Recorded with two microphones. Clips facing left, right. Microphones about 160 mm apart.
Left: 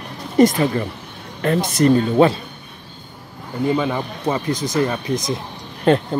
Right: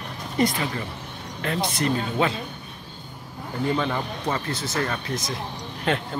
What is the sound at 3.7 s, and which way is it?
Speech, 10° left (ahead or behind).